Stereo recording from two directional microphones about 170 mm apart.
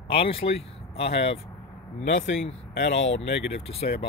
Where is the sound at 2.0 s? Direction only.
90° left.